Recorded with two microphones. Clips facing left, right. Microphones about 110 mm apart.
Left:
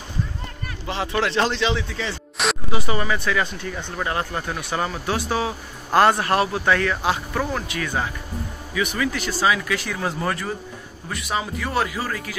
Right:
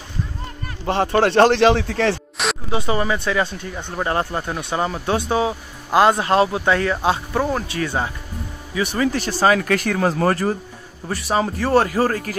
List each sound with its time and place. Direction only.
0.8 s speech: 50° right (ahead or behind)
2.4 s music: centre (ahead or behind)
2.7 s speech: 30° right (ahead or behind); by 10.2 s 55° right (ahead or behind)
10.2 s speech: 40° right (ahead or behind)